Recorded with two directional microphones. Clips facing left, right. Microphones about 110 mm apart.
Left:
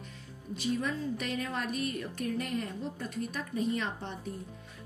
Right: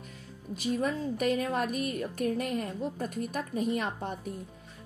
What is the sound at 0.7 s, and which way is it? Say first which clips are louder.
Speech: right 3 dB; 45° right (ahead or behind).